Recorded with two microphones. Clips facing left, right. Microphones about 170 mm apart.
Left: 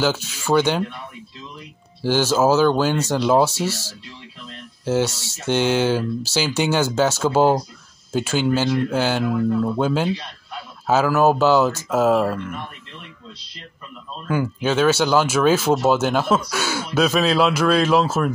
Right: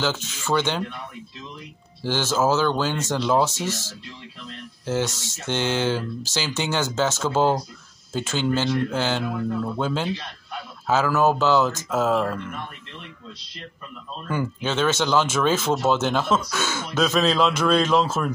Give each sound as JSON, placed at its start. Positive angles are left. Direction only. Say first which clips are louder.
{"t": 0.0, "sound": "speech", "louder": "left 4 dB", "side_deg": 10}
{"t": 2.0, "sound": "speech", "louder": "left 5 dB", "side_deg": 15}
{"t": 5.0, "sound": "speech", "louder": "left 4 dB", "side_deg": -20}
{"t": 5.5, "sound": "speech", "louder": "left 5 dB", "side_deg": 15}
{"t": 14.2, "sound": "speech", "louder": "left 5 dB", "side_deg": 10}